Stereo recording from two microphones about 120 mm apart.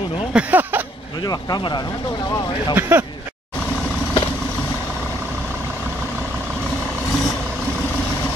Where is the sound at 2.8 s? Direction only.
15° right (ahead or behind).